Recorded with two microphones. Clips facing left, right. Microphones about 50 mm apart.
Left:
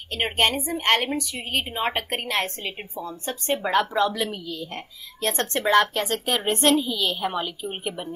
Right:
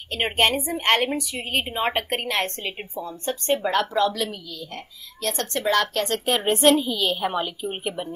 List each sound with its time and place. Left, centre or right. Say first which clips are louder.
0.1 s a woman's voice: right 1 dB; centre
6.0 s a woman's voice: right 2 dB; centre